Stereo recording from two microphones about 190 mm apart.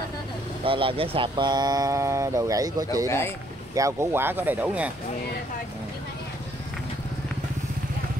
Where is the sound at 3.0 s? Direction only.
15° left (ahead or behind).